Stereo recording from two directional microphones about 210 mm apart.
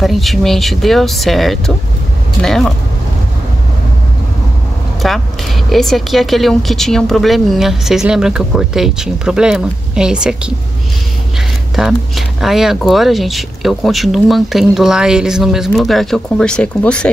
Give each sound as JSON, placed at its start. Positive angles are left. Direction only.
{"t": 0.0, "sound": "speech", "side_deg": 0}
{"t": 5.0, "sound": "speech", "side_deg": 0}
{"t": 11.7, "sound": "speech", "side_deg": 0}